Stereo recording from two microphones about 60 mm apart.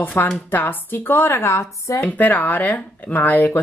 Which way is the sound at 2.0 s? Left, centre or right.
Left.